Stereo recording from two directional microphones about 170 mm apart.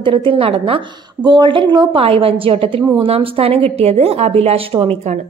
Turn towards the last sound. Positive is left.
turn(degrees=-35)  # may be behind; listen again after turning